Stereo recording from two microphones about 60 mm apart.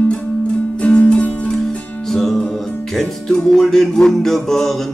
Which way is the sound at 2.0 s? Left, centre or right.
Centre.